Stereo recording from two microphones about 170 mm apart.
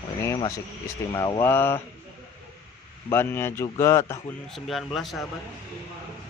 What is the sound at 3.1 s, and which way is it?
Speech, 15° left (ahead or behind).